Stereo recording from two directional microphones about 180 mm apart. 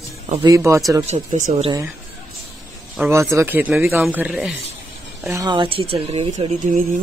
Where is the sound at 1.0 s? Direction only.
35° right (ahead or behind).